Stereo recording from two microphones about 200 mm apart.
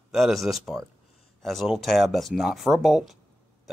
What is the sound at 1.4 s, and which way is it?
Speech, centre (ahead or behind).